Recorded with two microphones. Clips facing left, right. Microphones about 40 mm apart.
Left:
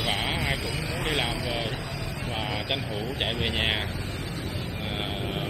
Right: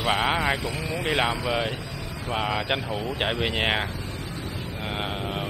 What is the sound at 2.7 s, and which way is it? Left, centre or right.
Speech, centre.